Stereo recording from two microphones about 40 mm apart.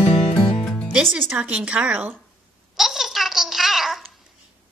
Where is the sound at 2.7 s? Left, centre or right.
Centre.